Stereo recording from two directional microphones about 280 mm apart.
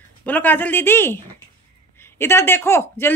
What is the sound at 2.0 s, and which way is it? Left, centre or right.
Speech, centre.